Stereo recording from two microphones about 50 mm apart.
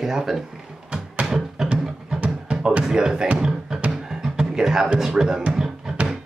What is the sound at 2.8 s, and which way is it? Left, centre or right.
Speech, centre.